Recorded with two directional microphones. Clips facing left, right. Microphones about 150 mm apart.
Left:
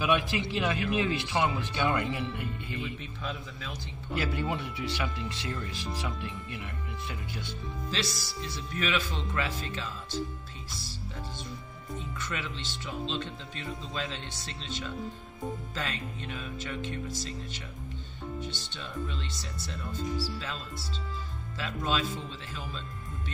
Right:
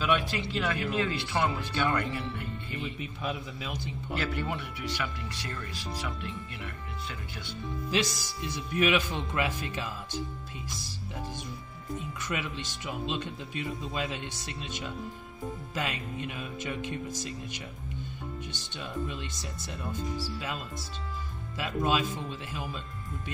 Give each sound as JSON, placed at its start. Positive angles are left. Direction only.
{"t": 0.0, "sound": "speech", "side_deg": 15}
{"t": 3.0, "sound": "speech", "side_deg": -10}
{"t": 4.3, "sound": "speech", "side_deg": 20}
{"t": 7.9, "sound": "speech", "side_deg": -15}
{"t": 12.2, "sound": "speech", "side_deg": -15}
{"t": 18.8, "sound": "speech", "side_deg": -15}